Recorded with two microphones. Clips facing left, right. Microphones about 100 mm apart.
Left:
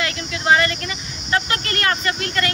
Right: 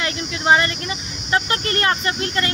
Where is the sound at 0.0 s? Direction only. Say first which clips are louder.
Right 1 dB; 25° right (ahead or behind).